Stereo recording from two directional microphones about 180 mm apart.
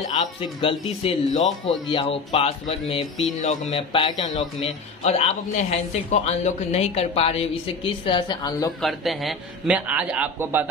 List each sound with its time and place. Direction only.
0.1 s a man's voice: 35° left (ahead or behind)
6.1 s a man's voice: 40° left (ahead or behind); by 8.7 s 20° left (ahead or behind)
8.8 s a man's voice: centre (ahead or behind)